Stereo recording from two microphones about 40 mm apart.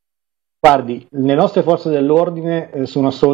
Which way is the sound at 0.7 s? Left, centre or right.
Centre.